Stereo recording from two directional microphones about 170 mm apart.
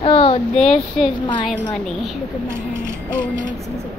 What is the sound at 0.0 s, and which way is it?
Child singing, 35° left (ahead or behind).